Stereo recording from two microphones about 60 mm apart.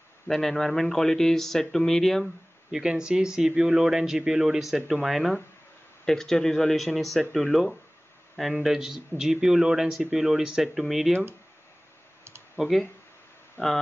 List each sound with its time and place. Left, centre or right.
0.3 s speech: centre
2.7 s speech: centre
12.5 s speech: centre
13.6 s speech: left